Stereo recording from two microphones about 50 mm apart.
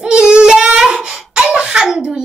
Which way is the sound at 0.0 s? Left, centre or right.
Centre.